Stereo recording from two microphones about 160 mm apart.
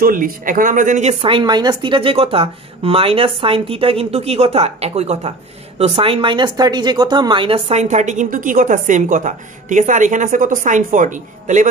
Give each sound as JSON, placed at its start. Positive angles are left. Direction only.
{"t": 0.0, "sound": "speech", "side_deg": -60}
{"t": 1.2, "sound": "speech", "side_deg": -30}